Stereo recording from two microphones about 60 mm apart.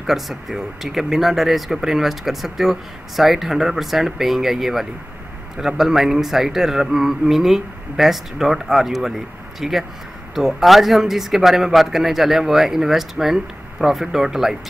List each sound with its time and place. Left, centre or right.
0.0 s speech: centre